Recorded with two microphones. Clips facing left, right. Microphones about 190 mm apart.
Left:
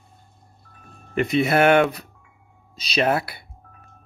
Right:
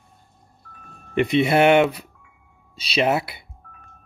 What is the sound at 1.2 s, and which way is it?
Speech, 30° right (ahead or behind).